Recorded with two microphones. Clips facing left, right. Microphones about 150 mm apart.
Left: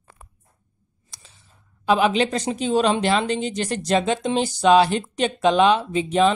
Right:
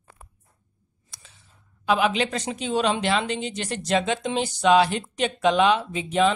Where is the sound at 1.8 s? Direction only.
35° left (ahead or behind).